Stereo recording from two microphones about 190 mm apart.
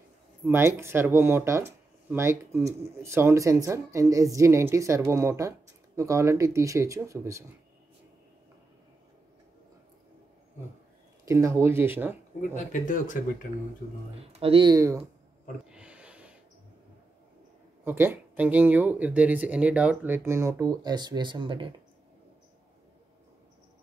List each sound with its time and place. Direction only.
0.5 s speech: 10° right (ahead or behind)
11.2 s speech: 15° right (ahead or behind)
12.4 s speech: 45° left (ahead or behind)
14.4 s speech: 25° right (ahead or behind)
15.7 s a sound: 5° right (ahead or behind)
17.8 s speech: 10° right (ahead or behind)